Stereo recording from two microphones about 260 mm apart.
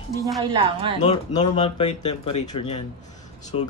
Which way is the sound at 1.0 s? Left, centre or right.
Centre.